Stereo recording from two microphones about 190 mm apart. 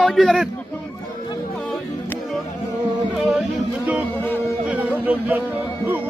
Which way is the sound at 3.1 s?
5° right (ahead or behind).